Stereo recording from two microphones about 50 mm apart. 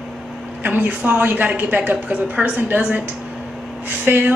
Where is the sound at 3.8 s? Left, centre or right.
Right.